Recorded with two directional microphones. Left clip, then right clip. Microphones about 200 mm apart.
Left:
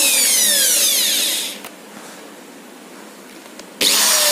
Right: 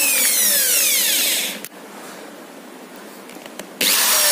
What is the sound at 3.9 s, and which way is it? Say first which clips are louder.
Drill: left 2 dB; 35° right (ahead or behind).